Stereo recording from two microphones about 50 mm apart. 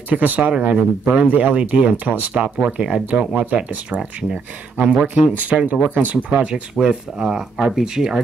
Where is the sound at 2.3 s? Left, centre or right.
Centre.